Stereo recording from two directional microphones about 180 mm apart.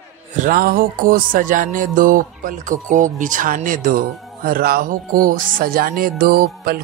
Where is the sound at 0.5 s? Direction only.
55° right (ahead or behind).